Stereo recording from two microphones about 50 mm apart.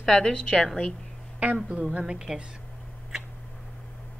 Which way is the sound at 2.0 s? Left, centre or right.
Centre.